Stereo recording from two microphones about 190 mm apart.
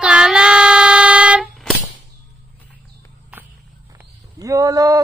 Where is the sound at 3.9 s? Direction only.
15° right (ahead or behind).